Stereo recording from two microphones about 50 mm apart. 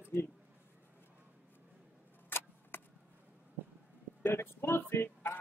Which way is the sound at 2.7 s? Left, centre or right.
Left.